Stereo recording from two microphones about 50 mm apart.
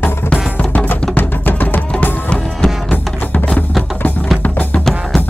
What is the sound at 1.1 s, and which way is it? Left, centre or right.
Music, left.